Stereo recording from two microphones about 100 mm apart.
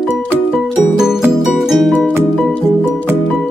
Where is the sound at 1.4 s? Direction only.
5° right (ahead or behind).